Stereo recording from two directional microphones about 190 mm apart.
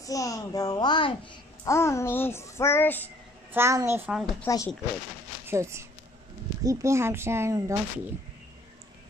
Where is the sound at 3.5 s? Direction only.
15° right (ahead or behind).